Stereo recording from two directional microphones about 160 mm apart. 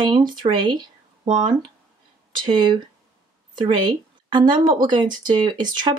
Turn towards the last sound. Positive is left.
turn(degrees=-25)  # may be behind; listen again after turning